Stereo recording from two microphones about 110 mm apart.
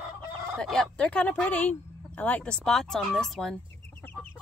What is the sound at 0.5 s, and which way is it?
Speech, 5° left (ahead or behind).